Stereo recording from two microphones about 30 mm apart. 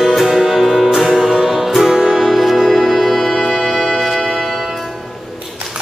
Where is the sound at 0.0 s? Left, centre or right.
Centre.